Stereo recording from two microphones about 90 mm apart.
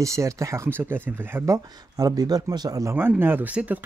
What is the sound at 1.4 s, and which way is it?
Speech, 40° right (ahead or behind).